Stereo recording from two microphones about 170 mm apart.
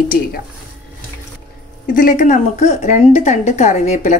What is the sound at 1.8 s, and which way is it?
A woman's voice, 55° left (ahead or behind).